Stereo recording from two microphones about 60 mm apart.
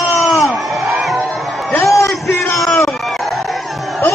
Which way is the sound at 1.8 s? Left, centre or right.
Left.